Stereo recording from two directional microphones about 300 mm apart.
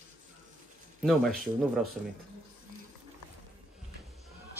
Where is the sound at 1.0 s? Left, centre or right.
Centre.